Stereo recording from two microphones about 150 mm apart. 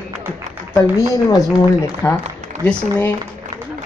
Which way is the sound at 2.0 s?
20° left (ahead or behind).